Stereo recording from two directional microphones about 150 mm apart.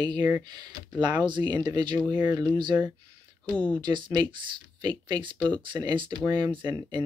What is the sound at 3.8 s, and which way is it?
Speech, 30° right (ahead or behind).